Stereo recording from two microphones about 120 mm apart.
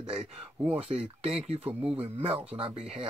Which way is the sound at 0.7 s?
60° right (ahead or behind).